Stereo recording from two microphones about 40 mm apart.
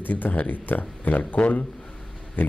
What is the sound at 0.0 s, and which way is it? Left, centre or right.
Speech, left.